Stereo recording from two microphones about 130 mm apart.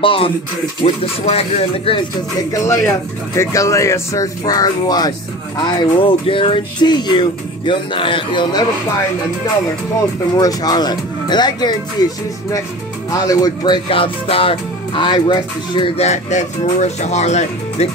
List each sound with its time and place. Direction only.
0.0 s speech: 45° left (ahead or behind)
2.5 s speech: 20° left (ahead or behind); by 8.6 s 40° left (ahead or behind)
10.4 s speech: 30° left (ahead or behind)
13.8 s speech: 45° left (ahead or behind)
16.0 s speech: 65° left (ahead or behind)